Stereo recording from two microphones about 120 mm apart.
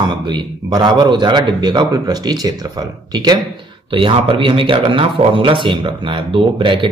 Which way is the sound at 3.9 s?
45° right (ahead or behind).